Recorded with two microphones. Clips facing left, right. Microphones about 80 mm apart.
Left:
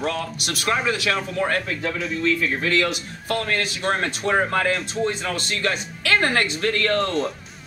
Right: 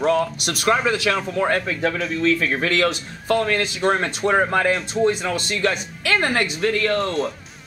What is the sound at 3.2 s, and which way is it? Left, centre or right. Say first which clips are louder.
A man's voice: right 4 dB; right.